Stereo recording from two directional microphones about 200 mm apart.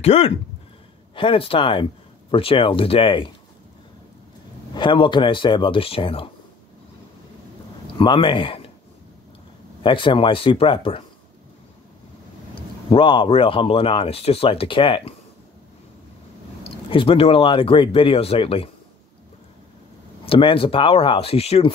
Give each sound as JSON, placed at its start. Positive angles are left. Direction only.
{"t": 0.0, "sound": "speech", "side_deg": 30}
{"t": 4.7, "sound": "speech", "side_deg": 25}
{"t": 8.0, "sound": "speech", "side_deg": 25}
{"t": 9.8, "sound": "speech", "side_deg": 25}
{"t": 12.9, "sound": "speech", "side_deg": 25}
{"t": 16.6, "sound": "speech", "side_deg": 25}
{"t": 20.2, "sound": "speech", "side_deg": 25}